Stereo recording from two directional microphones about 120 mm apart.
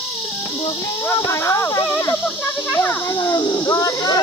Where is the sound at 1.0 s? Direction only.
25° left (ahead or behind).